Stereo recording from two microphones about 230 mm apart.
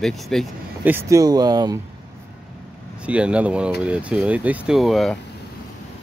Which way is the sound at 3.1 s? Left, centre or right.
Centre.